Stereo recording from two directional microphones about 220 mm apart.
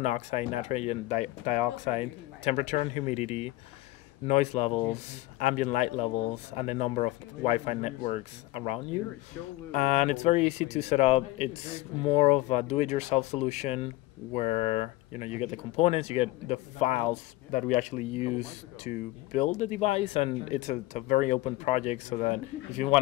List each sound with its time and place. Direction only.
0.0 s a man's voice: 30° left (ahead or behind)